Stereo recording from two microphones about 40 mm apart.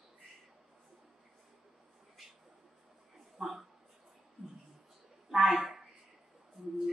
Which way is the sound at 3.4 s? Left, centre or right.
Centre.